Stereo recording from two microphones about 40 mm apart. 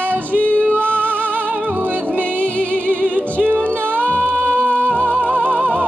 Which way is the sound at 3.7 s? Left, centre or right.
Right.